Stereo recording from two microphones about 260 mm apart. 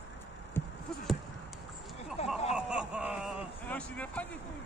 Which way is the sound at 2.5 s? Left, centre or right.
Centre.